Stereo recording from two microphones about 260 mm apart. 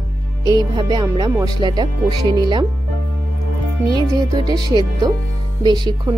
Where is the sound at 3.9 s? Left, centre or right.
Centre.